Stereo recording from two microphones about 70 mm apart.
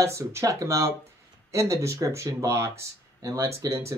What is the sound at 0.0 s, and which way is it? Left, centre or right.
Speech, right.